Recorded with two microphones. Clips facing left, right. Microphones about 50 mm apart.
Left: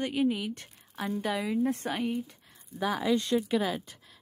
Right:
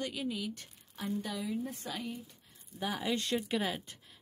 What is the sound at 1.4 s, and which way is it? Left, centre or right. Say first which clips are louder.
Speech: left 8 dB; left.